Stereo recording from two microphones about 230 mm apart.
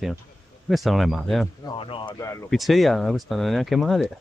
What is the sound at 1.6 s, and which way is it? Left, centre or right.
Speech, left.